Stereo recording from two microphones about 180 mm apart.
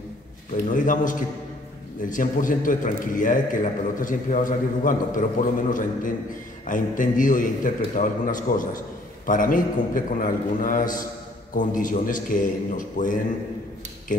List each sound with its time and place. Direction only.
0.7 s a man's voice: 45° left (ahead or behind)